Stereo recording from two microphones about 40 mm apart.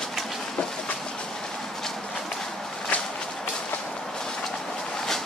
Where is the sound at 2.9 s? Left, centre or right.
Left.